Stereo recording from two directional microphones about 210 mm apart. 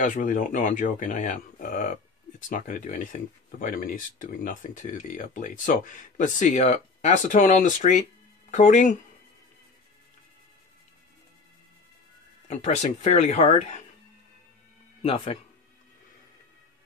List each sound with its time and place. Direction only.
0.0 s speech: 40° left (ahead or behind)
12.4 s speech: 35° left (ahead or behind)
15.0 s speech: 30° left (ahead or behind)